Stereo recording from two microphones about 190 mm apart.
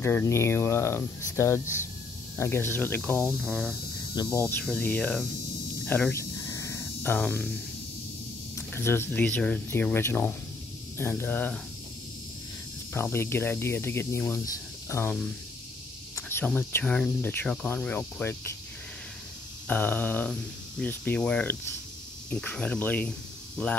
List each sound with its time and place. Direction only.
0.0 s speech: 15° left (ahead or behind)
4.1 s speech: 20° left (ahead or behind)
4.6 s cricket: 5° left (ahead or behind)
5.9 s a sound: 10° left (ahead or behind)
8.5 s speech: 10° left (ahead or behind)
12.9 s speech: 10° left (ahead or behind)
19.7 s speech: 5° left (ahead or behind)
22.3 s cricket: 5° left (ahead or behind)